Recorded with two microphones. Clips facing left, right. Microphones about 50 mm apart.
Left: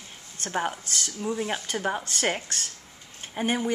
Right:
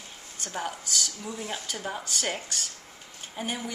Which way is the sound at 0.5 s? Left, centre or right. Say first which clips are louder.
Left 5 dB; left.